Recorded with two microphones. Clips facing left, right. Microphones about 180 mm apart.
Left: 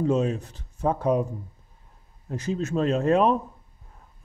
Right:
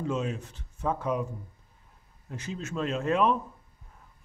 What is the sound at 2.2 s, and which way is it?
A man's voice, 40° left (ahead or behind).